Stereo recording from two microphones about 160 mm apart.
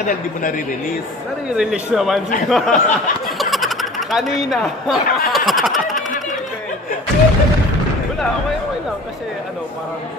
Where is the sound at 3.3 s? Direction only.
Centre (ahead or behind).